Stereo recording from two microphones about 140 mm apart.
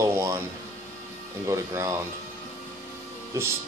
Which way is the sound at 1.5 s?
20° right (ahead or behind).